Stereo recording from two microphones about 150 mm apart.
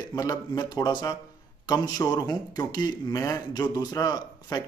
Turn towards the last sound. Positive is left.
turn(degrees=25)  # may be behind; listen again after turning